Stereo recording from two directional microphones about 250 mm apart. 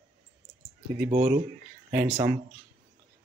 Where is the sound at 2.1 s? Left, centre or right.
Centre.